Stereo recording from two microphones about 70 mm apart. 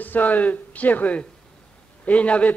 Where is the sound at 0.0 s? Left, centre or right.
Left.